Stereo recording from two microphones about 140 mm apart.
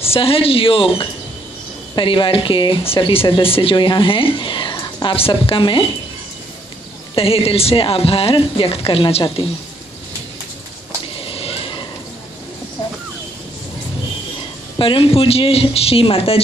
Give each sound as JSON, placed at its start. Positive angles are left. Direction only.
{"t": 0.0, "sound": "speech", "side_deg": 45}
{"t": 7.2, "sound": "speech", "side_deg": 40}
{"t": 11.1, "sound": "vehicle", "side_deg": 40}
{"t": 14.8, "sound": "a woman's voice", "side_deg": 40}